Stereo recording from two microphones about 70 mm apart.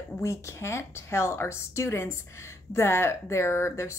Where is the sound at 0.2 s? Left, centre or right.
Left.